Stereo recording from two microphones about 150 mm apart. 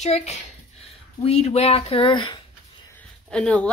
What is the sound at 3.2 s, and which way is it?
Speech, 5° left (ahead or behind).